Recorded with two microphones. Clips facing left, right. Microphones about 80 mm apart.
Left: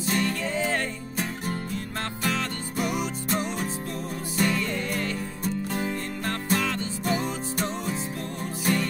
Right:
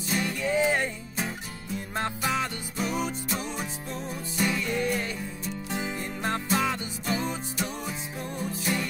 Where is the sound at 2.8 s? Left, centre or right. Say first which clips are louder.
Left 1 dB; centre.